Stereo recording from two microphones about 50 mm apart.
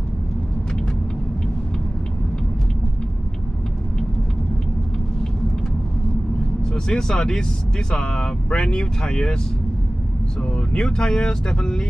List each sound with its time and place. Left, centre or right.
6.6 s speech: centre
10.4 s speech: left